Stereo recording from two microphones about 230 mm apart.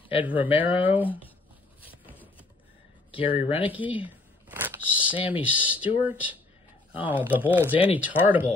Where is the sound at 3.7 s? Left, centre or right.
Centre.